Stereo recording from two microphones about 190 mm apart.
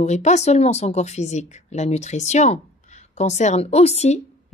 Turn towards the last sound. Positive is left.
turn(degrees=35)  # may be behind; listen again after turning